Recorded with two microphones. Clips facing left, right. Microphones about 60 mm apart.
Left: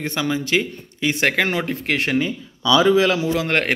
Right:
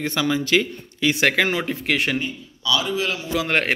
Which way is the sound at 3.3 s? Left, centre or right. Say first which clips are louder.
Left 1 dB; left.